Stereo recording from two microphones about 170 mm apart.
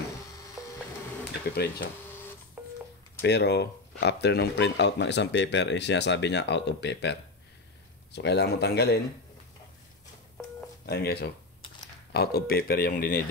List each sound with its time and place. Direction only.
1.5 s speech: 65° left (ahead or behind)
2.6 s telephone dialing: 5° right (ahead or behind)
3.2 s speech: 85° left
8.1 s speech: 80° left
10.9 s speech: 70° left (ahead or behind)